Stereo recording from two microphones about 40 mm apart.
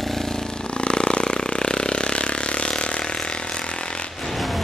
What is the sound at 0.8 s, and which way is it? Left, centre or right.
Vehicle, left.